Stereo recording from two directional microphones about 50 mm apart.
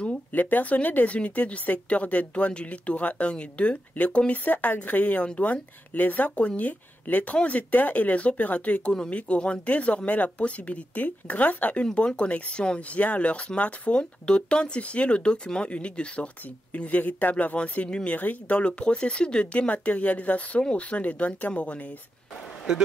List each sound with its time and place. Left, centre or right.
0.3 s speech: left
11.8 s speech: left
17.6 s speech: left
18.1 s speech: left
18.6 s speech: left
22.7 s speech: centre